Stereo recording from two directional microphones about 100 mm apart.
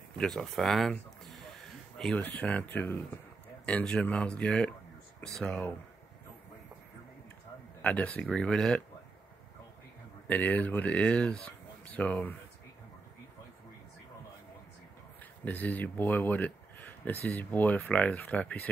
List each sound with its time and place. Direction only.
0.2 s speech: 5° left (ahead or behind)
7.8 s speech: 15° left (ahead or behind)
10.2 s speech: 15° left (ahead or behind)
15.4 s speech: 15° left (ahead or behind)